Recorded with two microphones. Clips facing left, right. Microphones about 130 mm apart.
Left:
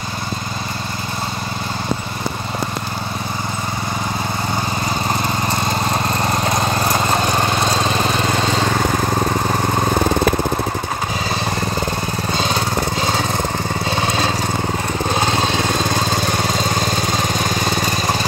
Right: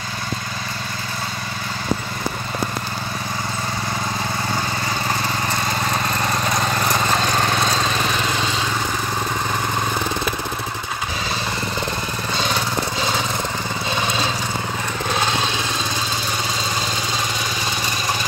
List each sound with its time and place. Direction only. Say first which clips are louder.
6.3 s lawn mower: left 3 dB; 30° left (ahead or behind)
7.9 s vehicle: left 4 dB; 40° left (ahead or behind)
15.7 s lawn mower: left 6 dB; 55° left (ahead or behind)